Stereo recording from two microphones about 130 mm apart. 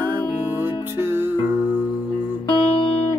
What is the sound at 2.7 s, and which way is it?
Music, 45° left (ahead or behind).